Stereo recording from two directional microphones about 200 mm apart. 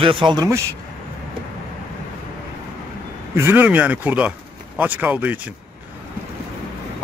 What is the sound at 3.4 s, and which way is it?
A man's voice, 10° right (ahead or behind).